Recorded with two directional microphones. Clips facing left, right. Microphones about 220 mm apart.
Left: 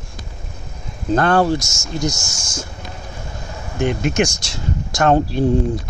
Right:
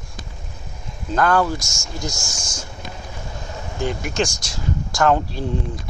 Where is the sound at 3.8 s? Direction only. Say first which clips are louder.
Left 5 dB; 20° left (ahead or behind).